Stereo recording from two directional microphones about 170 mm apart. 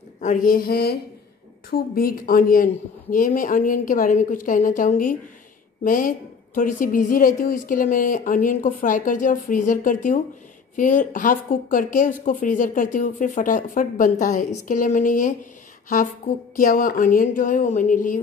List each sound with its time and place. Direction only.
0.2 s a woman's voice: 50° left (ahead or behind)
16.5 s a woman's voice: 55° left (ahead or behind)